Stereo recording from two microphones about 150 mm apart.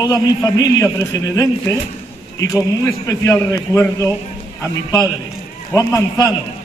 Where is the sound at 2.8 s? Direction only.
20° left (ahead or behind).